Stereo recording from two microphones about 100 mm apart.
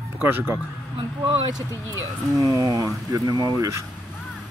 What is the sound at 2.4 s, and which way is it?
Speech, 35° right (ahead or behind).